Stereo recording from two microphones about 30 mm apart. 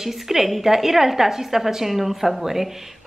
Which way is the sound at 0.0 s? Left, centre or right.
Centre.